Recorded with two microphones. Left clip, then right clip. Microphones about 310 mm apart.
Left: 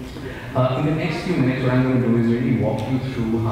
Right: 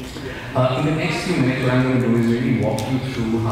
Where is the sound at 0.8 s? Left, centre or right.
Centre.